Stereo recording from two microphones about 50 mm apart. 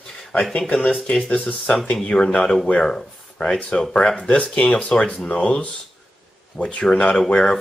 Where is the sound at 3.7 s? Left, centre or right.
Centre.